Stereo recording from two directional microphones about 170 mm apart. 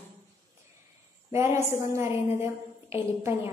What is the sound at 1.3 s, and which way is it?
A woman's voice, 15° right (ahead or behind).